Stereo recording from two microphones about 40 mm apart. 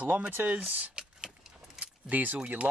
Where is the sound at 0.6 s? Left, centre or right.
Right.